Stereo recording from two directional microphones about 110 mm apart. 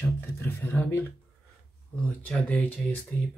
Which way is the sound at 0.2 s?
20° left (ahead or behind).